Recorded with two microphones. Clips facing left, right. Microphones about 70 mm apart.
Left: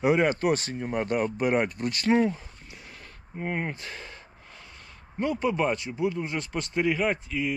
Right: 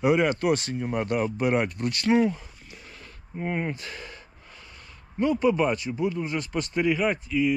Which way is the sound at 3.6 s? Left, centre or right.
Left.